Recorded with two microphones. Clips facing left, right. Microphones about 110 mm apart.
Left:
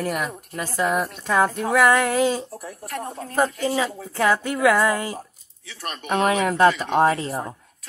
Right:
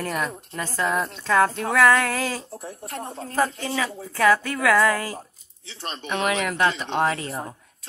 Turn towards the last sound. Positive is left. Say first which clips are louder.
# left 5 dB
turn(degrees=30)  # may be behind; listen again after turning